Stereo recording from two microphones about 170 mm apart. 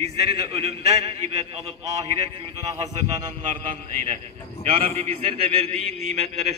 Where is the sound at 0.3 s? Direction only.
35° right (ahead or behind).